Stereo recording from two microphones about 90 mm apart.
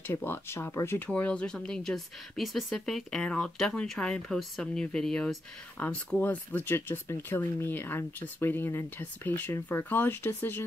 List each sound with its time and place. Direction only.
0.0 s speech: 25° left (ahead or behind)